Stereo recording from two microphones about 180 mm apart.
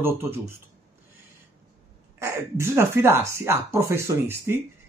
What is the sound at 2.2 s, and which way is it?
Speech, 15° right (ahead or behind).